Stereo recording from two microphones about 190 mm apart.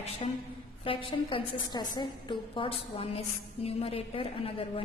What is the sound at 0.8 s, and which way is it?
A woman's voice, 25° left (ahead or behind).